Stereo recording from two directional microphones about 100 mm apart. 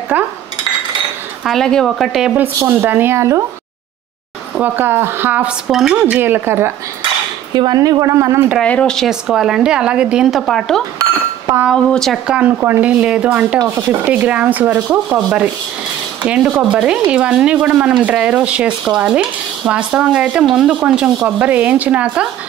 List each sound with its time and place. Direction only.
0.1 s speech: 15° right (ahead or behind)
1.4 s speech: 5° left (ahead or behind)
2.3 s a woman's voice: 15° right (ahead or behind)
4.6 s a woman's voice: 20° right (ahead or behind)
5.7 s speech: 5° right (ahead or behind)
6.1 s a woman's voice: 20° right (ahead or behind)
7.5 s speech: 40° right (ahead or behind)
8.6 s speech: 15° left (ahead or behind)
8.9 s speech: 5° right (ahead or behind)
12.3 s speech: 15° right (ahead or behind)
16.3 s speech: 10° right (ahead or behind)